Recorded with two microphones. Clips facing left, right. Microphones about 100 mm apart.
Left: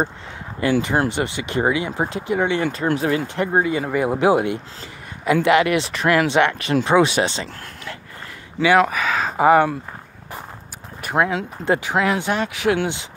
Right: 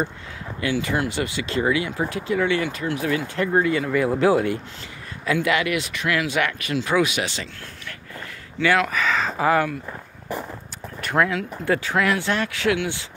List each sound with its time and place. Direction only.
0.6 s speech: 40° left (ahead or behind)
1.1 s speech: 20° left (ahead or behind)
2.6 s speech: 40° left (ahead or behind)
3.5 s speech: 20° left (ahead or behind); by 6.2 s 40° left (ahead or behind)
6.3 s speech: 25° left (ahead or behind)
8.9 s speech: 10° left (ahead or behind)
9.4 s speech: 25° left (ahead or behind)
11.0 s speech: 15° left (ahead or behind)